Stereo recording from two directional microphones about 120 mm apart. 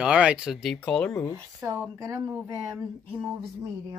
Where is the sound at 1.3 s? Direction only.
25° right (ahead or behind).